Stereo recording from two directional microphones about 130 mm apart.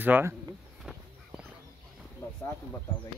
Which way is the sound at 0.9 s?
5° right (ahead or behind).